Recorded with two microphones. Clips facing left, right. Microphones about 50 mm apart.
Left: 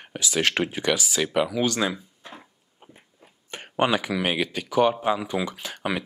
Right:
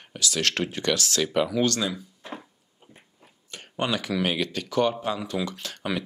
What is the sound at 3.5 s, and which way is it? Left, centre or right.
Speech, left.